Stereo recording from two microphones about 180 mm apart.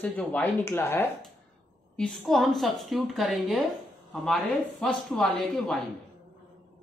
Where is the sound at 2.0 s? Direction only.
5° left (ahead or behind).